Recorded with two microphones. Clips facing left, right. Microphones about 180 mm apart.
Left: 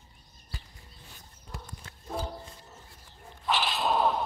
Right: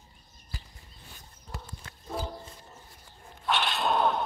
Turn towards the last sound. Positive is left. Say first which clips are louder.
# even
turn(degrees=0)  # may be behind; listen again after turning